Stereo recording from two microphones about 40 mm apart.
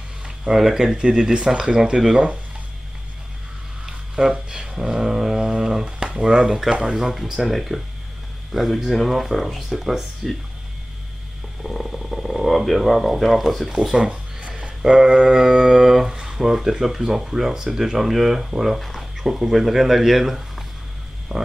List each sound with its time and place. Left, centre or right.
0.5 s speech: centre
3.8 s a sound: centre
5.9 s speech: right
7.0 s speech: centre
11.6 s speech: centre
13.8 s speech: centre
18.8 s a sound: centre
19.2 s speech: centre